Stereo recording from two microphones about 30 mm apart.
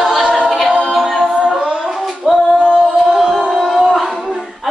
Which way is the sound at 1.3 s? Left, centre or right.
Right.